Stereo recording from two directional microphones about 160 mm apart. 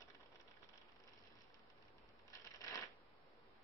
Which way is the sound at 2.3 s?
20° left (ahead or behind).